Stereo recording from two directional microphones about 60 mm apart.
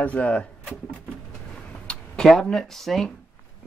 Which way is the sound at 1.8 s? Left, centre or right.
Centre.